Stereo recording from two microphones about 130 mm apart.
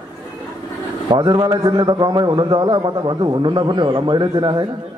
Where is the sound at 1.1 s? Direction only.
35° right (ahead or behind).